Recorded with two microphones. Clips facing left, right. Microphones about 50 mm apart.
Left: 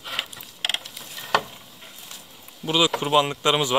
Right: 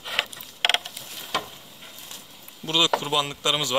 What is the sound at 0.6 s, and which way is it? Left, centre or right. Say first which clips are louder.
Mechanisms: right 5 dB; right.